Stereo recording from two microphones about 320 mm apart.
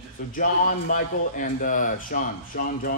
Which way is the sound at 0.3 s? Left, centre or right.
Left.